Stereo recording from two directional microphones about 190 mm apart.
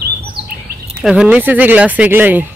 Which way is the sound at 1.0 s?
5° right (ahead or behind).